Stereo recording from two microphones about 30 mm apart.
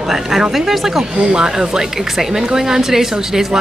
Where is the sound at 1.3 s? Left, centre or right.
Right.